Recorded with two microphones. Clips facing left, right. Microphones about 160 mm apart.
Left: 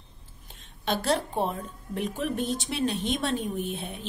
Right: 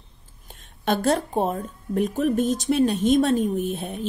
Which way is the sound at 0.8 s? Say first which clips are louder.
Right 5 dB; 45° right (ahead or behind).